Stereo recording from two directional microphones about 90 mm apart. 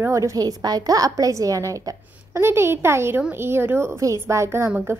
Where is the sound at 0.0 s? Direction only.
35° right (ahead or behind).